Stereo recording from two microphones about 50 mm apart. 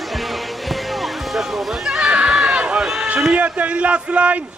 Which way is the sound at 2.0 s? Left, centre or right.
Centre.